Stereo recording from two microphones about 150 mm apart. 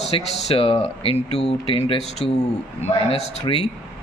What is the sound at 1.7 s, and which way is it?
A man's voice, 40° left (ahead or behind).